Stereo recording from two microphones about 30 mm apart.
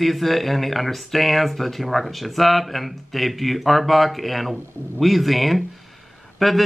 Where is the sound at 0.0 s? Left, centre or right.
Centre.